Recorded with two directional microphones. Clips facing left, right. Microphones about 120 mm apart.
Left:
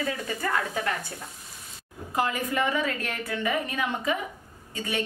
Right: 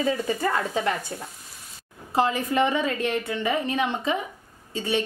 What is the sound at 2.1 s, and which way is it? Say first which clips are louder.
A woman's voice: right 5 dB; 25° right (ahead or behind).